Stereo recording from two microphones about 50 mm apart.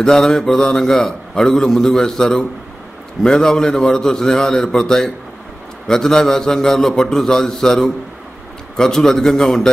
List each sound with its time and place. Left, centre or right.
0.0 s a man's voice: centre